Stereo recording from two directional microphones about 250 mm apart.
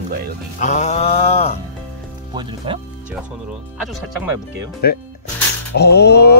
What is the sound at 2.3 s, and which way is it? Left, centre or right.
Speech, centre.